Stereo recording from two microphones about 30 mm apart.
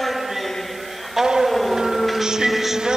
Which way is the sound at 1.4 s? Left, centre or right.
Centre.